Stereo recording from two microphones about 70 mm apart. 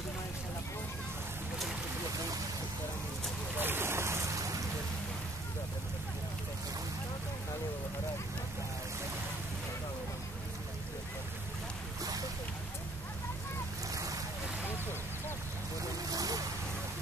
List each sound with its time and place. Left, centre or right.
3.5 s boat: right
13.9 s boat: right
16.1 s a sound: right